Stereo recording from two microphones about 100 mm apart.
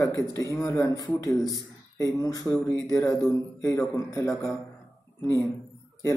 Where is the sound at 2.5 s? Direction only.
40° right (ahead or behind).